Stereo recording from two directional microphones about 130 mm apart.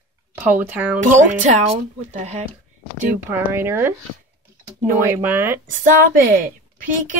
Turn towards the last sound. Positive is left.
turn(degrees=-90)